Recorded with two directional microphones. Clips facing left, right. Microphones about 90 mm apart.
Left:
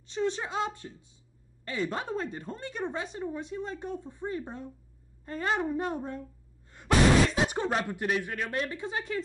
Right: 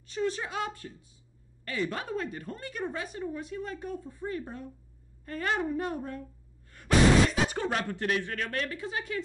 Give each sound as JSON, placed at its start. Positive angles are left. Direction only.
{"t": 0.0, "sound": "a woman's voice", "side_deg": 25}